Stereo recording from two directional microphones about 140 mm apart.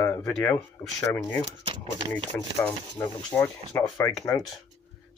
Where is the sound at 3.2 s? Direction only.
30° left (ahead or behind).